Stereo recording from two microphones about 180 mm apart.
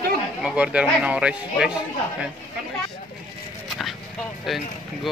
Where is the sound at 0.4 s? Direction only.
5° right (ahead or behind).